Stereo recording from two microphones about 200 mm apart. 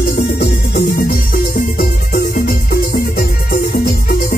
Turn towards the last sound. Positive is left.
turn(degrees=45)  # may be behind; listen again after turning